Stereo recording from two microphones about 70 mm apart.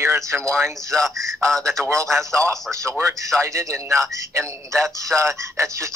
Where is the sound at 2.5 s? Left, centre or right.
Right.